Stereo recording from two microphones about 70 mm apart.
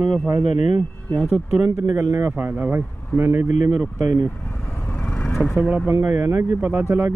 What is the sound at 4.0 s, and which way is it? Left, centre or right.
Speech, right.